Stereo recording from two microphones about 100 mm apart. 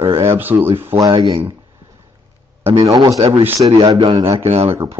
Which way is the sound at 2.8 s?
35° right (ahead or behind).